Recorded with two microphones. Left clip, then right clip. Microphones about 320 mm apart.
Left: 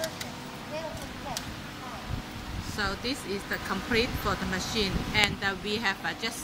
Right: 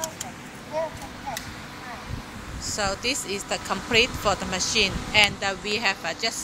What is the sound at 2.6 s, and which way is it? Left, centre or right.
Speech, centre.